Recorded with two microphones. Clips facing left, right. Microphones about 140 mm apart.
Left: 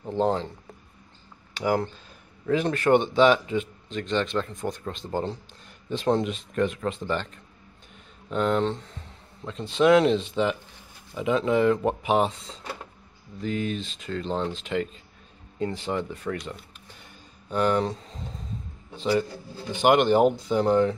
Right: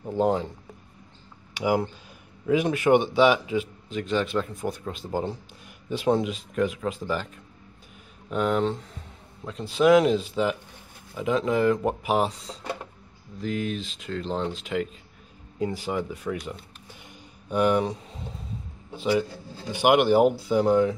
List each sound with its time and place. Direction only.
0.1 s speech: 10° right (ahead or behind)
1.5 s speech: 10° right (ahead or behind)